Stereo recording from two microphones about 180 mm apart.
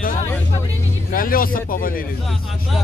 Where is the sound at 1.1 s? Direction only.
50° left (ahead or behind).